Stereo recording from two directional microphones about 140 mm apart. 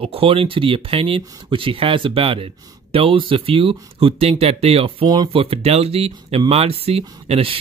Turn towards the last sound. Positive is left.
turn(degrees=-45)  # may be behind; listen again after turning